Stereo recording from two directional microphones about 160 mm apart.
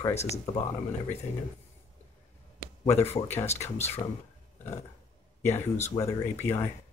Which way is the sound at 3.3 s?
45° left (ahead or behind).